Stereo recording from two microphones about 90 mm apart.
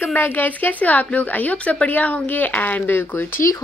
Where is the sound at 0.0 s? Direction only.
20° left (ahead or behind).